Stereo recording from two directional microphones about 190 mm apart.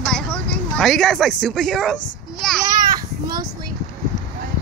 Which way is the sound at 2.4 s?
Centre (ahead or behind).